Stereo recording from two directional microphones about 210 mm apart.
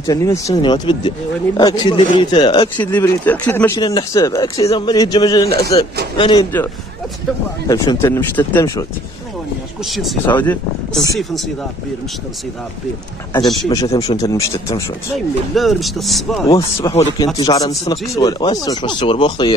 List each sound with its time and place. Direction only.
0.0 s speech: 15° left (ahead or behind)
2.8 s speech: 10° left (ahead or behind)
7.6 s speech: 15° left (ahead or behind)
9.8 s speech: centre (ahead or behind)
10.2 s speech: 10° left (ahead or behind)
13.7 s speech: 20° left (ahead or behind)
15.1 s speech: centre (ahead or behind)
16.8 s speech: 15° left (ahead or behind)